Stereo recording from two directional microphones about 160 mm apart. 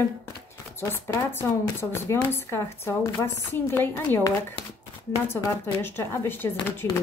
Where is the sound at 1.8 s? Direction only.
15° left (ahead or behind).